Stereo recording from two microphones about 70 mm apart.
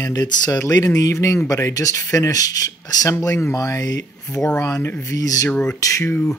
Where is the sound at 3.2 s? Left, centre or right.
Left.